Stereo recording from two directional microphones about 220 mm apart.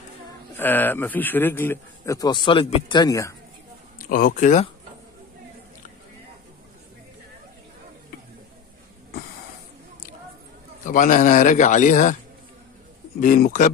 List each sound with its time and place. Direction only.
0.6 s speech: 10° left (ahead or behind)
4.1 s a man's voice: 40° left (ahead or behind)
10.9 s a man's voice: 35° left (ahead or behind)
13.2 s a man's voice: 35° left (ahead or behind)